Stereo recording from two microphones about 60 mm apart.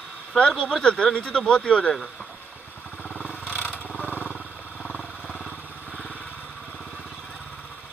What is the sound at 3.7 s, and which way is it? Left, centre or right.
Vehicle, left.